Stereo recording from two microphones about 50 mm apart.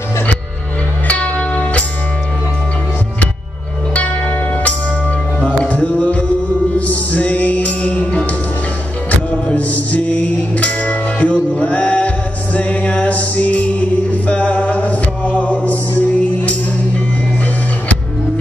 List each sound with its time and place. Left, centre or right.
1.0 s music: left
3.9 s music: left